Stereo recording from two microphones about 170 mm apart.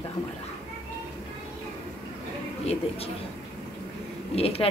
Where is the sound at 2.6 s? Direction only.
35° left (ahead or behind).